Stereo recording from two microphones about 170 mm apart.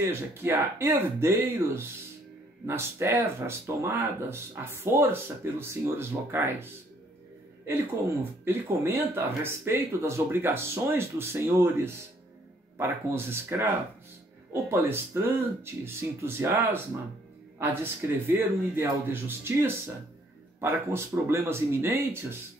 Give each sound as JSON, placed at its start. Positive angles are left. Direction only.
{"t": 0.0, "sound": "speech", "side_deg": -15}
{"t": 8.2, "sound": "speech", "side_deg": -15}